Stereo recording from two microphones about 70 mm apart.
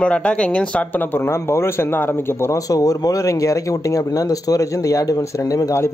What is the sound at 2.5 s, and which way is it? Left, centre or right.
Speech, left.